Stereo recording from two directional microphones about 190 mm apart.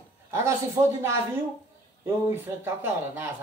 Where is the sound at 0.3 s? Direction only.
15° right (ahead or behind).